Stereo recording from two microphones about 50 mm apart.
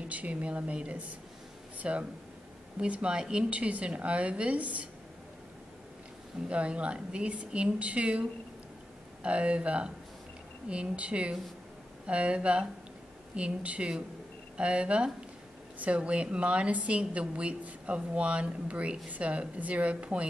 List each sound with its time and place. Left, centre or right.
0.1 s a woman's voice: right
6.5 s a woman's voice: right